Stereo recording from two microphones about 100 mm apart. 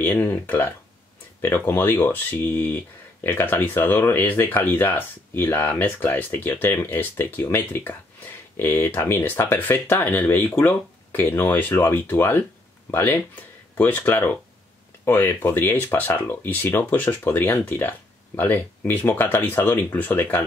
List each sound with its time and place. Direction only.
0.0 s speech: 20° left (ahead or behind)